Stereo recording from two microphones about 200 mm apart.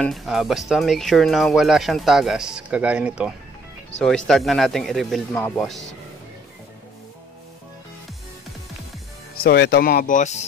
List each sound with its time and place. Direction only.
0.0 s speech: centre (ahead or behind)
9.4 s speech: 50° left (ahead or behind)